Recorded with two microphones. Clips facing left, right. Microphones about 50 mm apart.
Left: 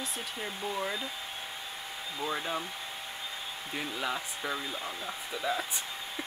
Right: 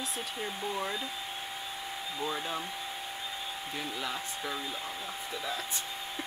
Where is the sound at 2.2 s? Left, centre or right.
Centre.